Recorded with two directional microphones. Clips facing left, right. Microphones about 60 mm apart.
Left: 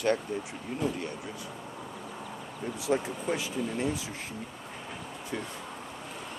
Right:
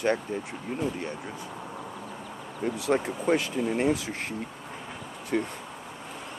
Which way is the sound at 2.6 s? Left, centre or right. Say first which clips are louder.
Right 3 dB; right.